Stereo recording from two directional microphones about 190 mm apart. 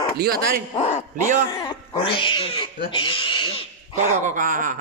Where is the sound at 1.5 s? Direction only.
25° left (ahead or behind).